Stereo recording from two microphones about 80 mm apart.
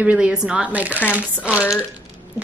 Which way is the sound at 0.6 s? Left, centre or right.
Centre.